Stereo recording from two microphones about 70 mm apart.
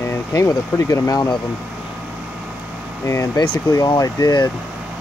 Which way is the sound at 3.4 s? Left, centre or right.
Left.